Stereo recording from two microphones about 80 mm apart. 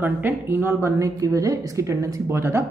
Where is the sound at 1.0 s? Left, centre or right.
Right.